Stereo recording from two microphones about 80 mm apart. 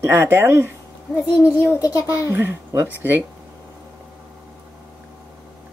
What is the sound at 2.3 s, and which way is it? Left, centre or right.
Speech, right.